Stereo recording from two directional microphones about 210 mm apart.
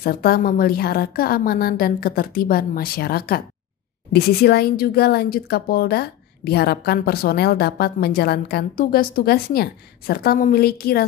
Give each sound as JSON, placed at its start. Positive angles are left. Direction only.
{"t": 0.0, "sound": "a woman's voice", "side_deg": 45}